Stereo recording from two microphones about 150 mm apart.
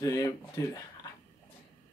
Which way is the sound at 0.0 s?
25° left (ahead or behind).